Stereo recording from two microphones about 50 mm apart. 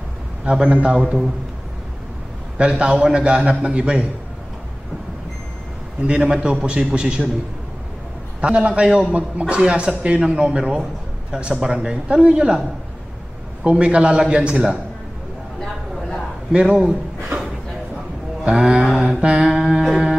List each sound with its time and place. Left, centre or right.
0.7 s a man's voice: right
2.5 s a man's voice: right
5.9 s a man's voice: right
8.4 s a man's voice: right
13.7 s a man's voice: right
16.5 s a sound: centre
18.4 s humming: right